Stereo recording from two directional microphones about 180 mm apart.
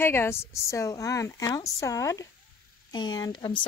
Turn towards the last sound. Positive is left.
turn(degrees=20)  # may be behind; listen again after turning